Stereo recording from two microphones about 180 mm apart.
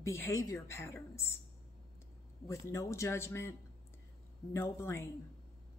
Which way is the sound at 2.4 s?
15° left (ahead or behind).